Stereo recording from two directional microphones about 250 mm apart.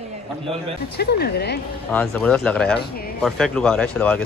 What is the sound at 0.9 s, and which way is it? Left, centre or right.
Speech, left.